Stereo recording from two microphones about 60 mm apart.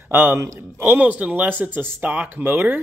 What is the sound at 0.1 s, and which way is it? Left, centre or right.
Speech, right.